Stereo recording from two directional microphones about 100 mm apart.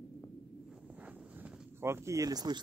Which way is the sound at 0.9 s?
15° right (ahead or behind).